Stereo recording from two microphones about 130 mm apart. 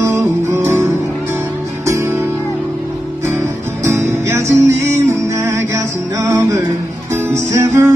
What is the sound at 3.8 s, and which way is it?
Music, 20° right (ahead or behind).